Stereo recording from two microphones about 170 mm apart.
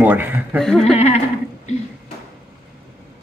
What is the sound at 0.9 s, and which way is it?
Speech, 40° left (ahead or behind).